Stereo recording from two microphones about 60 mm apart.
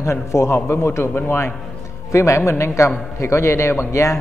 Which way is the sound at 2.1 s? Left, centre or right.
Left.